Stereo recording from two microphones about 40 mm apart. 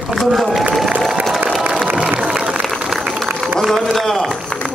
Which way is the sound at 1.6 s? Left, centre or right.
Right.